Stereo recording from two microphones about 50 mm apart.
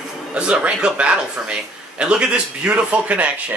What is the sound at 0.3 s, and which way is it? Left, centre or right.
A man's voice, right.